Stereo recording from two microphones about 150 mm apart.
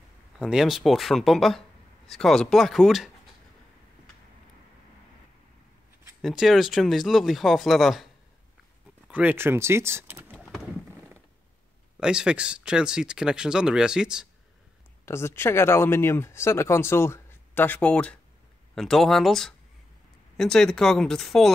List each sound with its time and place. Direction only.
0.4 s speech: 5° right (ahead or behind)
6.2 s speech: centre (ahead or behind)
9.0 s speech: 10° right (ahead or behind)
10.3 s a sound: centre (ahead or behind)
12.0 s speech: 5° right (ahead or behind)
15.0 s speech: 15° left (ahead or behind); by 21.5 s centre (ahead or behind)